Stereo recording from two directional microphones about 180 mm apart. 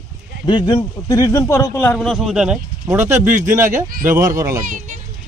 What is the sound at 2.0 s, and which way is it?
A man's voice, centre (ahead or behind).